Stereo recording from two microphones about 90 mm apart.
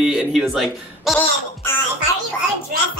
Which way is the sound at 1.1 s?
25° left (ahead or behind).